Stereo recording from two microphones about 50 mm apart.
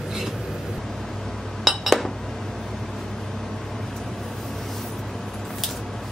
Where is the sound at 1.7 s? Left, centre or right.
Centre.